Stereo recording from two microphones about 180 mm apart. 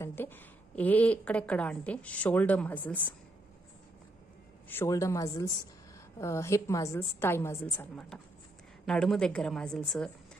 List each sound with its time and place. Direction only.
0.0 s a woman's voice: 10° left (ahead or behind)
4.6 s a woman's voice: 15° left (ahead or behind)